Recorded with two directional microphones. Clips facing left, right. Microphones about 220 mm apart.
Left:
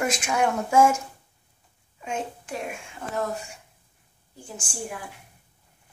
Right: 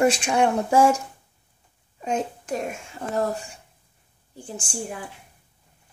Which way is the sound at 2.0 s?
40° right (ahead or behind).